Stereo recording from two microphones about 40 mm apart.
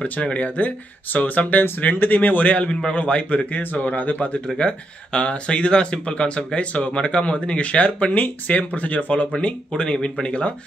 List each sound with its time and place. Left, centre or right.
0.2 s speech: left
2.5 s speech: left
4.6 s speech: left
9.3 s speech: left